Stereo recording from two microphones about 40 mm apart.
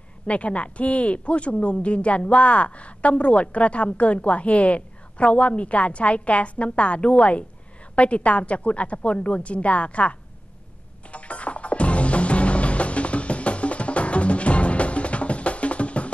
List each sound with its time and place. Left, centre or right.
0.3 s speech: left
11.1 s music: left